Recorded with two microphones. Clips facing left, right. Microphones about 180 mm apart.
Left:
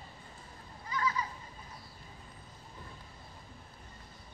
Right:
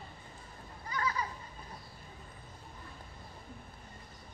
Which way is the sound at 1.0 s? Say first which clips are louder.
Left 1 dB; 40° right (ahead or behind).